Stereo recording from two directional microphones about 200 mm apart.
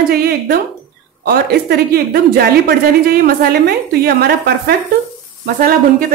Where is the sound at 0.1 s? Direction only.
50° right (ahead or behind).